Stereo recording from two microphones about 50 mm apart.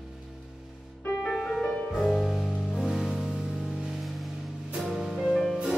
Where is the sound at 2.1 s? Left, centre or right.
Centre.